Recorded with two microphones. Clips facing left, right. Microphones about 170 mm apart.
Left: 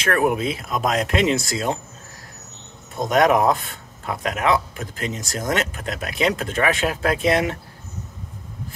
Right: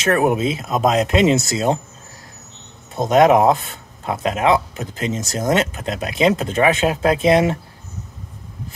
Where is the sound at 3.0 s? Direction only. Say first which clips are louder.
Right 4 dB; 25° right (ahead or behind).